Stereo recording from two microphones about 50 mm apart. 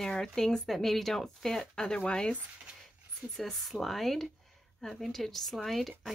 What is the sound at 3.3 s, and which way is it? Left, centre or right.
Speech, centre.